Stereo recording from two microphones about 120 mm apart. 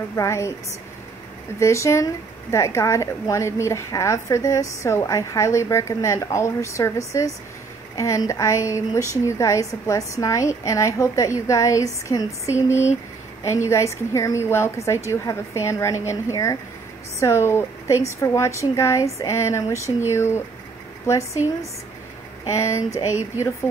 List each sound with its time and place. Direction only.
0.1 s a woman's voice: 25° left (ahead or behind)
1.6 s a woman's voice: 25° left (ahead or behind)
22.4 s a woman's voice: 25° left (ahead or behind)